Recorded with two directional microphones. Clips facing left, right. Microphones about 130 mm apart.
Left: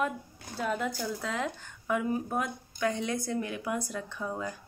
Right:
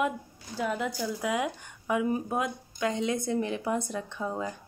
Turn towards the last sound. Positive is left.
turn(degrees=-20)  # may be behind; listen again after turning